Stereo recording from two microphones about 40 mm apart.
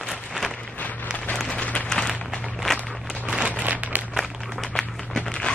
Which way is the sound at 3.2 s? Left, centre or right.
Right.